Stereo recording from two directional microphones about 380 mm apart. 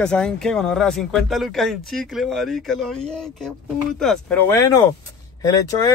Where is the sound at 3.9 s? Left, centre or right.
Centre.